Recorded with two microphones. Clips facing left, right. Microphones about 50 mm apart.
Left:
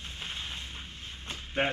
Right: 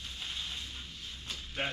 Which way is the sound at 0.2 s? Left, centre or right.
Left.